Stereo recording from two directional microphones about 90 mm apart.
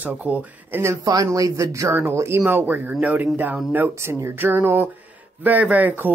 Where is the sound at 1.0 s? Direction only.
40° right (ahead or behind); by 3.3 s 15° right (ahead or behind).